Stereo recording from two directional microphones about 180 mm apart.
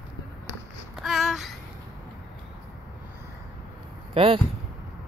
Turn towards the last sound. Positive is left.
turn(degrees=-30)  # may be behind; listen again after turning